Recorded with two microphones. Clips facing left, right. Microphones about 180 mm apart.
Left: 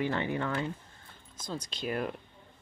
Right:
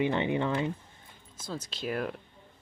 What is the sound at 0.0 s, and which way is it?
Speech, 20° right (ahead or behind).